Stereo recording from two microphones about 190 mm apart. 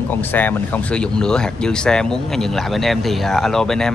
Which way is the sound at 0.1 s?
10° left (ahead or behind).